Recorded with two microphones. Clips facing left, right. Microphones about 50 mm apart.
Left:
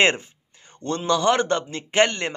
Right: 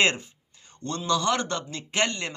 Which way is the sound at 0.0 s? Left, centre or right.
Left.